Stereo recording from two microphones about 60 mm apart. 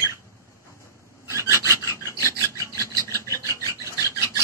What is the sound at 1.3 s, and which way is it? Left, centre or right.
Filing, right.